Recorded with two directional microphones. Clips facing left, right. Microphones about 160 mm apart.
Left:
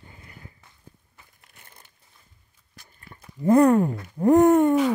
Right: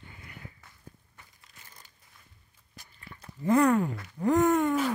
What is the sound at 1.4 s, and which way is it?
Crumpling, 60° left (ahead or behind).